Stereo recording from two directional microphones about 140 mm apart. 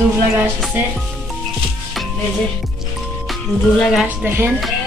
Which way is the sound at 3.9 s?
15° right (ahead or behind).